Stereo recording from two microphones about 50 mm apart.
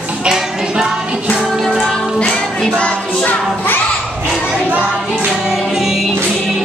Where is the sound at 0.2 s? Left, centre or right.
Centre.